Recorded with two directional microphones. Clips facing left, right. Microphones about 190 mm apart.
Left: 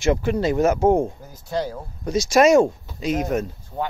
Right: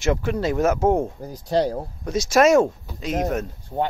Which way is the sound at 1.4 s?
35° right (ahead or behind).